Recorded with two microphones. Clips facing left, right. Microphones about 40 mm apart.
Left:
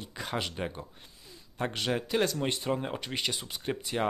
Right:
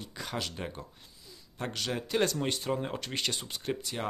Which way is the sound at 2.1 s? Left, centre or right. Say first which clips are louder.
Right 2 dB; centre.